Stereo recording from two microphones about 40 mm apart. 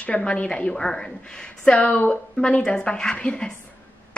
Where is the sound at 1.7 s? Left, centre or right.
Left.